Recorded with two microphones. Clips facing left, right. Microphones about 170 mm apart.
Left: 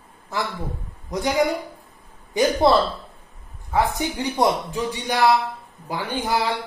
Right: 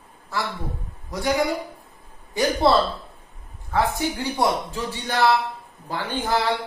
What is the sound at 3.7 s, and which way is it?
Speech, 15° left (ahead or behind).